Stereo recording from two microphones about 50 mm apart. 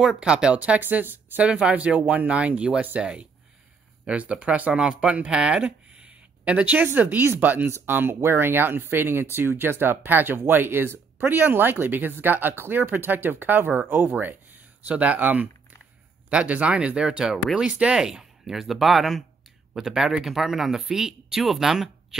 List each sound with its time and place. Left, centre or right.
0.0 s speech: centre; by 1.4 s right
1.4 s speech: right
16.3 s speech: right